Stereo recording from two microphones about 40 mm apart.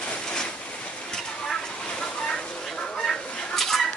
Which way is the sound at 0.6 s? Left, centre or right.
Left.